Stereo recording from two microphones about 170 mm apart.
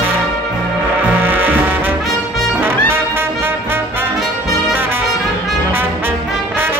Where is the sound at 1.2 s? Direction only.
10° right (ahead or behind).